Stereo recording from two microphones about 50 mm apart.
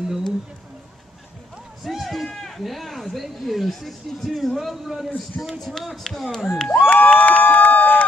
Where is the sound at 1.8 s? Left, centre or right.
Centre.